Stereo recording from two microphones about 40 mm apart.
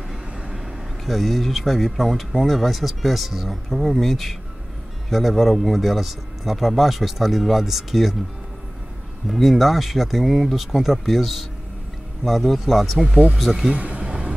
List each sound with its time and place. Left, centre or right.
0.1 s speech: centre
9.3 s speech: centre
13.7 s speech: right